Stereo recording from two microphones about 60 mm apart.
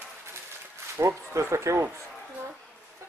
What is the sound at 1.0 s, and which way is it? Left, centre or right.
Speech, right.